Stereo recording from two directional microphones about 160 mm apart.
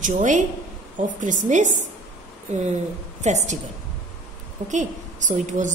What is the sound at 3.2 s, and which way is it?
Speech, 45° right (ahead or behind).